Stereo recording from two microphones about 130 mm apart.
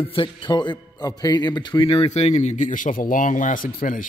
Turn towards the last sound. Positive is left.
turn(degrees=90)